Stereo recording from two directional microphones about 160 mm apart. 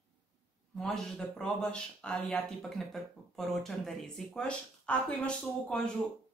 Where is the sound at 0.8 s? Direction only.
5° left (ahead or behind).